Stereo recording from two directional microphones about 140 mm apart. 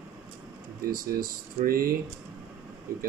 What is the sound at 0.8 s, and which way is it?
Speech, 90° right.